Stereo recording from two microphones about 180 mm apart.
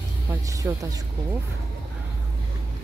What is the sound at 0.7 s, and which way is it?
Speech, 10° right (ahead or behind).